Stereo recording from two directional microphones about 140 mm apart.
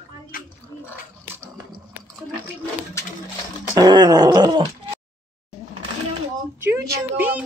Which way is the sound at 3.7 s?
30° right (ahead or behind).